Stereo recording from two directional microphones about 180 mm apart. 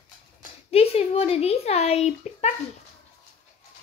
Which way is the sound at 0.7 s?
35° left (ahead or behind).